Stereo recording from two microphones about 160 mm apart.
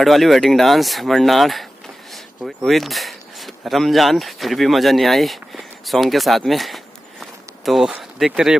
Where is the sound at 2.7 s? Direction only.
Centre (ahead or behind).